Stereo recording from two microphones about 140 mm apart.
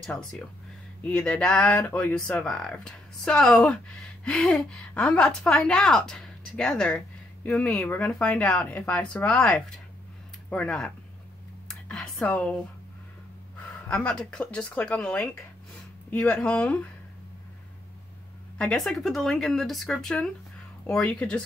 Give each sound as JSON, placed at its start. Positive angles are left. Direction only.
{"t": 0.0, "sound": "speech", "side_deg": 5}
{"t": 2.1, "sound": "speech", "side_deg": 5}
{"t": 11.9, "sound": "speech", "side_deg": 5}
{"t": 13.8, "sound": "speech", "side_deg": 5}
{"t": 18.6, "sound": "speech", "side_deg": 5}